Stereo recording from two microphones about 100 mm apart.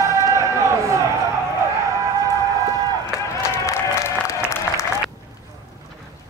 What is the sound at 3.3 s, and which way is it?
Applause, 30° left (ahead or behind).